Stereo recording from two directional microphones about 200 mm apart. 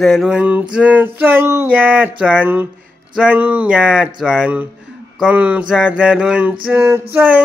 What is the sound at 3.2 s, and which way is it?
Speech, 5° right (ahead or behind).